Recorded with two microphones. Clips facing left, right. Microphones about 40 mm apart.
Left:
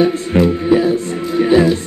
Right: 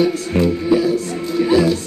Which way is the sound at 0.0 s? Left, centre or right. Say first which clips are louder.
Left 3 dB; left.